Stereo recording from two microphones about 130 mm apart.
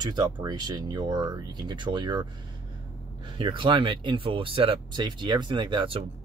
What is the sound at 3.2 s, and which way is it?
Speech, 40° right (ahead or behind).